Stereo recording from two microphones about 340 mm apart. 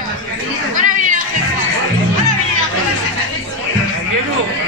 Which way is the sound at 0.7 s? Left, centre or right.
Right.